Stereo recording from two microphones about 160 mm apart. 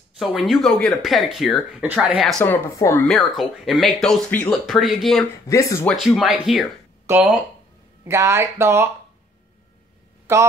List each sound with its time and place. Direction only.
0.2 s speech: centre (ahead or behind)
2.4 s speech: 15° left (ahead or behind)
5.5 s speech: 20° left (ahead or behind)
5.9 s speech: centre (ahead or behind); by 8.9 s 15° right (ahead or behind)
10.3 s speech: 15° right (ahead or behind)